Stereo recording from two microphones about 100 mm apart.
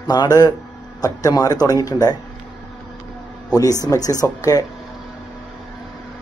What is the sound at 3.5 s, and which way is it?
Speech, 35° left (ahead or behind).